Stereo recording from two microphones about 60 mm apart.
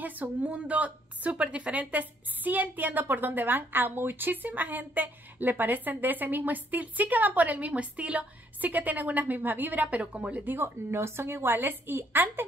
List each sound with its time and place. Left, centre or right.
0.0 s a woman's voice: right
10.4 s a woman's voice: right